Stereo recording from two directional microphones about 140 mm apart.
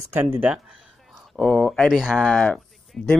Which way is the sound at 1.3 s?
5° left (ahead or behind).